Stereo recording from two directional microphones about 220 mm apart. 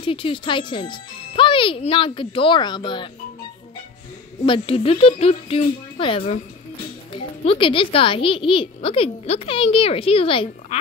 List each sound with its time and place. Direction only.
0.0 s a child's voice: 25° left (ahead or behind)
4.5 s a child's voice: 25° left (ahead or behind)